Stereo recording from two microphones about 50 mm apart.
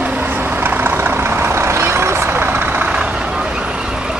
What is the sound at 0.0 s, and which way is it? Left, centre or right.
Vehicle, right.